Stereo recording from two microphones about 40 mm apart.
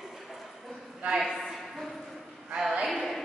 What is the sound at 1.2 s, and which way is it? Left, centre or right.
Speech, centre.